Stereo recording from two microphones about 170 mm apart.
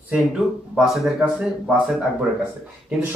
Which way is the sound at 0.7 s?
Centre (ahead or behind).